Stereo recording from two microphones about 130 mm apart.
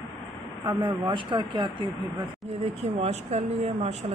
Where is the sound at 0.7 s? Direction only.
30° right (ahead or behind).